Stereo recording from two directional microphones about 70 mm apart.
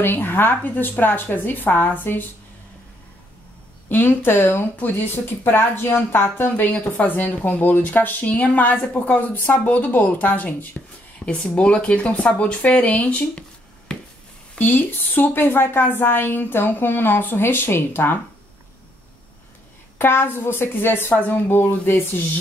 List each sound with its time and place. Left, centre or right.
0.0 s speech: left
3.9 s a woman's voice: left
15.1 s a woman's voice: left
20.0 s a woman's voice: left